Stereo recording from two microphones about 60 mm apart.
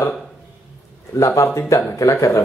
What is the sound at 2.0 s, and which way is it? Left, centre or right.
Speech, left.